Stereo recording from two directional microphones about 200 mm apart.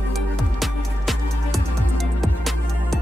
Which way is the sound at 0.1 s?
Centre (ahead or behind).